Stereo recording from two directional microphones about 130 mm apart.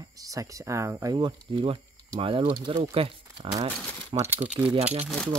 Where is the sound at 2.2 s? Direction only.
45° right (ahead or behind).